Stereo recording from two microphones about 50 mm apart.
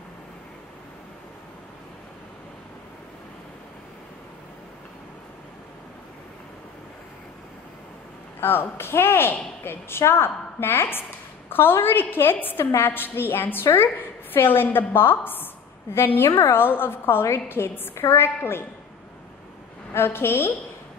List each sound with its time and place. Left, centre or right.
8.4 s a woman's voice: left
17.9 s a woman's voice: left
19.9 s a woman's voice: left